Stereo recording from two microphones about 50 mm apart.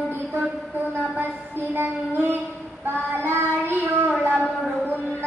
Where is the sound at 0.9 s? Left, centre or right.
Right.